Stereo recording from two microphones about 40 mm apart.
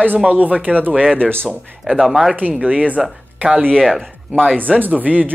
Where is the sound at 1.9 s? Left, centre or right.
Centre.